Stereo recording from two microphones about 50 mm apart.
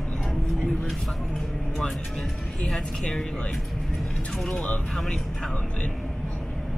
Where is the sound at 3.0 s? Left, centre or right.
Centre.